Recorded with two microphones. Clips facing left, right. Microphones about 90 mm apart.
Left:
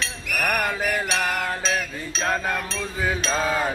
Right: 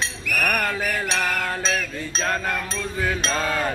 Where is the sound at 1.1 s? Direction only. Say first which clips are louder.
Even; 15° left (ahead or behind).